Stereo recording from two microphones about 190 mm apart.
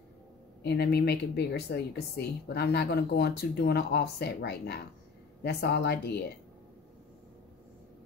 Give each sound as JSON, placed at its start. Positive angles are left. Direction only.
{"t": 0.6, "sound": "speech", "side_deg": 60}